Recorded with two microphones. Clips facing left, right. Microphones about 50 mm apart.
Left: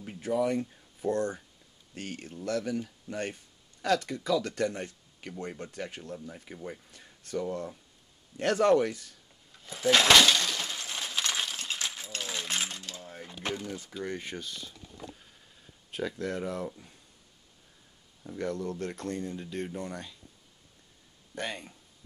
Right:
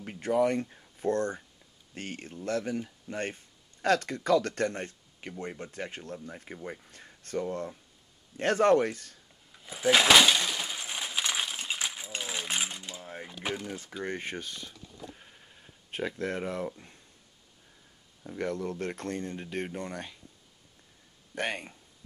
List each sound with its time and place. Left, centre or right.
0.0 s speech: right
3.8 s speech: right
5.4 s speech: right
5.7 s speech: right
9.7 s breaking: centre
13.0 s mechanisms: right
13.4 s a sound: centre
14.0 s speech: right
15.1 s a sound: right
18.4 s speech: right
21.4 s speech: right